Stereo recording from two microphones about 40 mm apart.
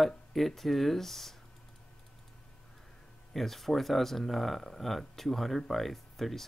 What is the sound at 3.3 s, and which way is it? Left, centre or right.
Speech, centre.